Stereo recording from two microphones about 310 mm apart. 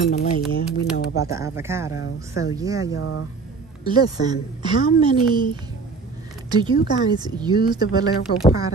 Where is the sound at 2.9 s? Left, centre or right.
Left.